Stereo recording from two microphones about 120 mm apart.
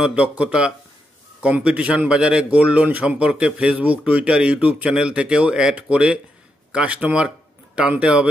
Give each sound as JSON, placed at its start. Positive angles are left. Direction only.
{"t": 0.0, "sound": "a man's voice", "side_deg": -10}